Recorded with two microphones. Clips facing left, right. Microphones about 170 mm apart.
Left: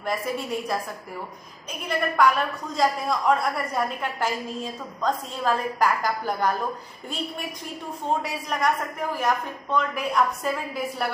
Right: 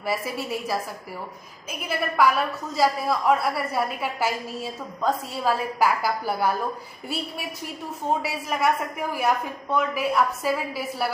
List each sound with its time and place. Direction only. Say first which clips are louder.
0.0 s a woman's voice: even; 5° right (ahead or behind)
8.2 s a woman's voice: right 1 dB; 5° right (ahead or behind)